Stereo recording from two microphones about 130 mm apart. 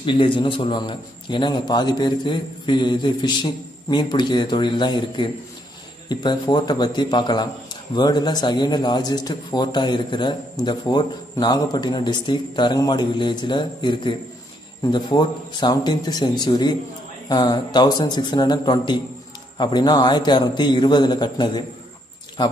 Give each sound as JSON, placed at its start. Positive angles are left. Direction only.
{"t": 0.0, "sound": "a man's voice", "side_deg": 40}